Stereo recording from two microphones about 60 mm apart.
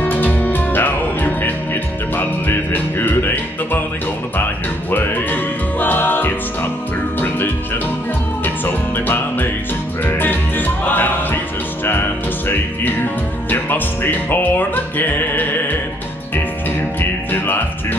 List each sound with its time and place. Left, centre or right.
0.0 s music: left
4.9 s music: left
17.3 s music: left